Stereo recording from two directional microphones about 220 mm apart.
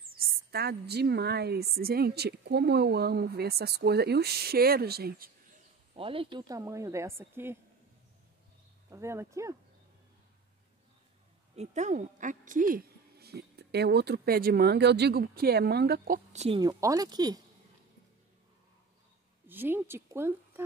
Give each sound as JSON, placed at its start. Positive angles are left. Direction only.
{"t": 0.1, "sound": "a woman's voice", "side_deg": -45}
{"t": 5.9, "sound": "a woman's voice", "side_deg": -25}
{"t": 8.9, "sound": "a woman's voice", "side_deg": -10}
{"t": 11.5, "sound": "a woman's voice", "side_deg": -30}
{"t": 16.3, "sound": "a woman's voice", "side_deg": -25}
{"t": 19.4, "sound": "a woman's voice", "side_deg": -10}